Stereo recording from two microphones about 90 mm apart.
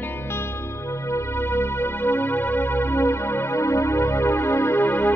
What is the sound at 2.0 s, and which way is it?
Music, 25° left (ahead or behind).